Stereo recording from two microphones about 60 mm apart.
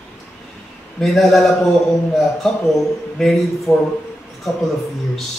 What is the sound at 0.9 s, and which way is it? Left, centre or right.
Mantra, centre.